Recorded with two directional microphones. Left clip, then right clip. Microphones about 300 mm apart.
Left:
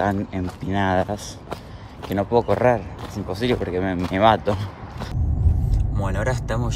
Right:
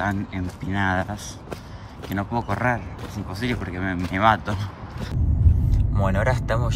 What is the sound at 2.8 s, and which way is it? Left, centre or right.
Speech, left.